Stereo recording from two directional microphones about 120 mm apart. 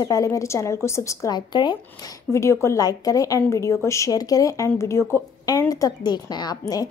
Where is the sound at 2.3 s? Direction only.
25° left (ahead or behind).